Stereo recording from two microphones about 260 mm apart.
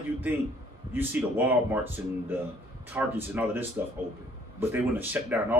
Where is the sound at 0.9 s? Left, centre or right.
Centre.